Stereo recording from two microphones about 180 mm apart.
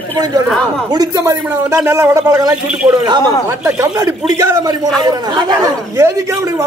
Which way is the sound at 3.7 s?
15° right (ahead or behind).